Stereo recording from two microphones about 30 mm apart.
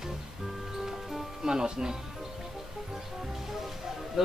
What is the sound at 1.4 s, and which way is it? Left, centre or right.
Speech, right.